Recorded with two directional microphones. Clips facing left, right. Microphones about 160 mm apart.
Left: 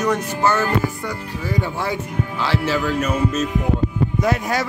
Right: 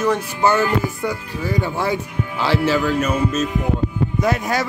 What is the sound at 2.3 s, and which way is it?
Speech, 10° right (ahead or behind).